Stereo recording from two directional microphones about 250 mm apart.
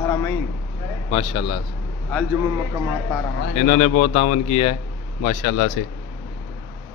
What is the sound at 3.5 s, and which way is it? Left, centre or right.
A man's voice, left.